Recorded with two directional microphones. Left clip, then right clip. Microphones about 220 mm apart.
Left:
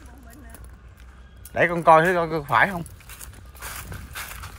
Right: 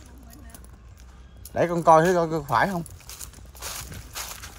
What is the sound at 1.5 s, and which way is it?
A man's voice, 20° right (ahead or behind).